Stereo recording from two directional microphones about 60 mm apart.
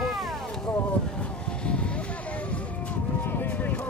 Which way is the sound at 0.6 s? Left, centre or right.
Centre.